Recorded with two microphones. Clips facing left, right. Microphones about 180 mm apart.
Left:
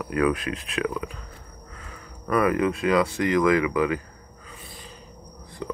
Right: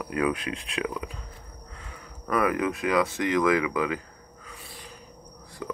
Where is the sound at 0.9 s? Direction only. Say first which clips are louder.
Left 3 dB; 15° right (ahead or behind).